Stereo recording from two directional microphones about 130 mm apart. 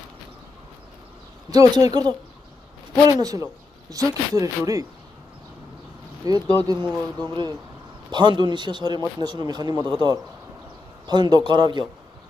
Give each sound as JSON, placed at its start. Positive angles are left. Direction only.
{"t": 1.5, "sound": "speech", "side_deg": -30}
{"t": 6.2, "sound": "speech", "side_deg": -30}